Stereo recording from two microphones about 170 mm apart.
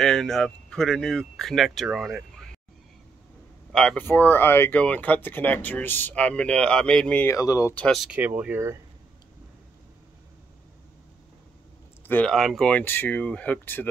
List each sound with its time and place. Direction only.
0.0 s speech: 5° left (ahead or behind)
3.7 s speech: 5° left (ahead or behind)
7.3 s speech: 20° left (ahead or behind)
7.7 s speech: 5° left (ahead or behind); by 8.7 s 10° right (ahead or behind)
12.1 s speech: 5° left (ahead or behind)